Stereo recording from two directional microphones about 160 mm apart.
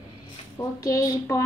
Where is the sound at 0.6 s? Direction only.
20° left (ahead or behind).